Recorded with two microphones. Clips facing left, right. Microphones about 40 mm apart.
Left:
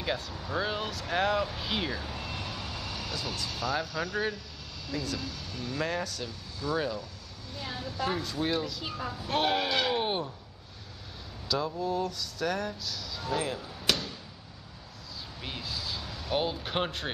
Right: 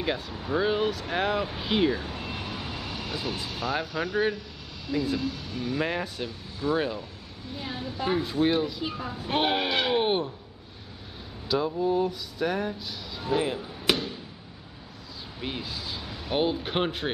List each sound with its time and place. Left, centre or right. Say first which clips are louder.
0.0 s speech: right 3 dB; centre
11.4 s speech: right 5 dB; right
15.4 s speech: right 3 dB; centre